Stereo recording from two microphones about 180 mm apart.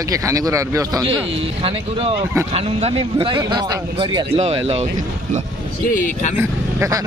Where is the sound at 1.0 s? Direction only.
30° right (ahead or behind).